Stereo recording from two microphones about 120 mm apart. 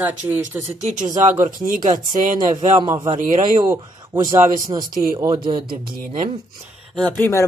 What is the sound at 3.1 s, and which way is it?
Speech, 90° right.